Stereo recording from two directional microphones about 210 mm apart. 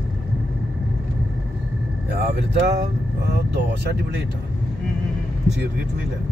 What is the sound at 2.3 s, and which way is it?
Speech, 50° right (ahead or behind).